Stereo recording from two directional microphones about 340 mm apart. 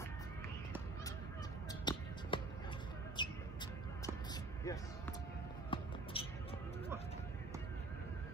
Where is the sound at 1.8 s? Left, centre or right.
Centre.